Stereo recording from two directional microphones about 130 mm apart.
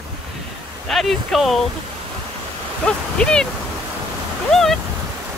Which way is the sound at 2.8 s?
5° left (ahead or behind).